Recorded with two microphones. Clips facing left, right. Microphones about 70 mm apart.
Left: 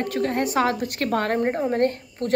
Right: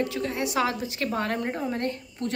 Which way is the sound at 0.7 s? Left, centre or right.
Left.